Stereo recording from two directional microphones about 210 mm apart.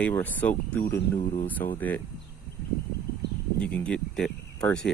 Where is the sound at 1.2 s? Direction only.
30° left (ahead or behind).